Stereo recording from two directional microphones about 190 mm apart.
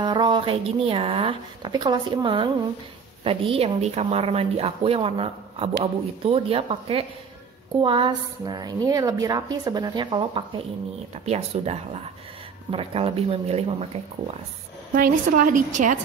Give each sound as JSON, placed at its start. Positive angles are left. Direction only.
{"t": 0.0, "sound": "a woman's voice", "side_deg": -25}
{"t": 15.0, "sound": "a woman's voice", "side_deg": -45}